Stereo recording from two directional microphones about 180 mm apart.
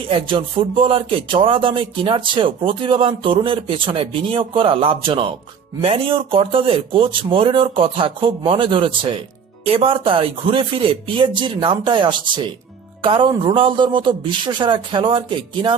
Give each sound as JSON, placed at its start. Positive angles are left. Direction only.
{"t": 0.6, "sound": "speech", "side_deg": -30}